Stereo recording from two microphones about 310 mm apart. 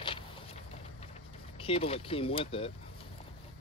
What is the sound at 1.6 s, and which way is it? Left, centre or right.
Speech, centre.